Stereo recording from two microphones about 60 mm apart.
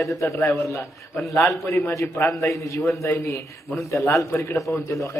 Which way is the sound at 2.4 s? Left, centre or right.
Left.